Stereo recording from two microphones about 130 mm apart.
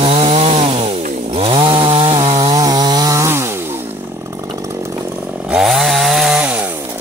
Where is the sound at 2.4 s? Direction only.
30° right (ahead or behind).